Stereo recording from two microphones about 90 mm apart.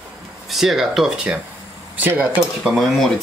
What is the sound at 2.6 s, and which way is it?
Speech, 5° right (ahead or behind).